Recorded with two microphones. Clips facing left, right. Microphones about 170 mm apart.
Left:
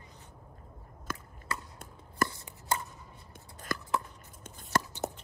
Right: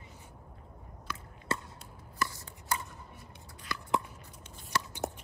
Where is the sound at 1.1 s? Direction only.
45° left (ahead or behind).